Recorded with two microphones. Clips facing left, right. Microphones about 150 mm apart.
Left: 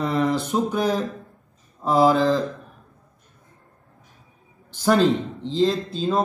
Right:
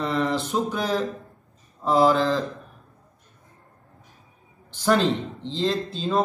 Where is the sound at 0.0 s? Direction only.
Centre (ahead or behind).